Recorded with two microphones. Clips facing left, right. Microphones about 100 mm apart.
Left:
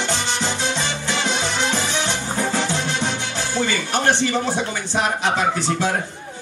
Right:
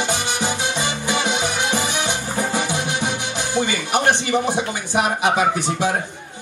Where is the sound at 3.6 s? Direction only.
15° right (ahead or behind).